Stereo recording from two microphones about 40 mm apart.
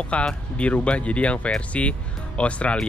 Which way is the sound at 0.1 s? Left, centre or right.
Left.